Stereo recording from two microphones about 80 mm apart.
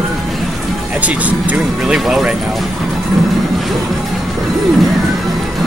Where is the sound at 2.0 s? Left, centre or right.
Centre.